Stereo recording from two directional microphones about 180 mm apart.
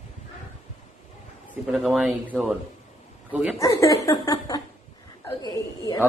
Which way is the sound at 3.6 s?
20° left (ahead or behind).